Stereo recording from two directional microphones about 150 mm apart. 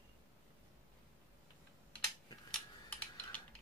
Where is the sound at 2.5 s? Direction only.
10° left (ahead or behind).